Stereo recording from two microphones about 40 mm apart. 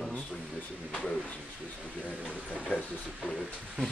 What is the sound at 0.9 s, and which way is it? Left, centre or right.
Speech, left.